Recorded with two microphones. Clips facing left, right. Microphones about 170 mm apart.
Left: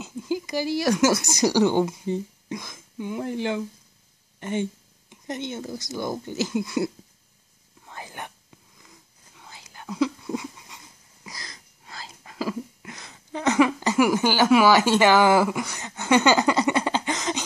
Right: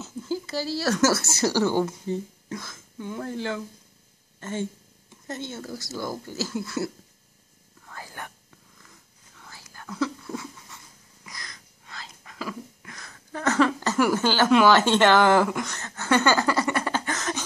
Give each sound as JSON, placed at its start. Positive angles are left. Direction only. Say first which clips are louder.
{"t": 0.0, "sound": "speech", "louder": "left 2 dB", "side_deg": 15}
{"t": 7.8, "sound": "whispering", "louder": "left 2 dB", "side_deg": 20}
{"t": 11.2, "sound": "a sound", "louder": "left 2 dB", "side_deg": 30}